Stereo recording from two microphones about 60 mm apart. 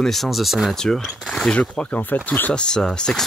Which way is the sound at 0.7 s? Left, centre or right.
Centre.